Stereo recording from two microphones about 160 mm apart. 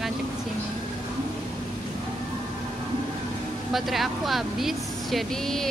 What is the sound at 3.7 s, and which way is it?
Speech, centre (ahead or behind).